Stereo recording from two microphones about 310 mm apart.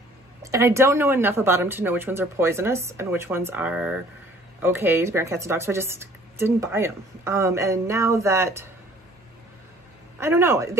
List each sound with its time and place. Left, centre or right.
0.4 s speech: centre
10.2 s speech: centre